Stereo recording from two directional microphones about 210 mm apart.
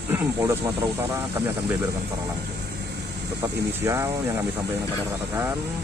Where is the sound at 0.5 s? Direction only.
10° right (ahead or behind).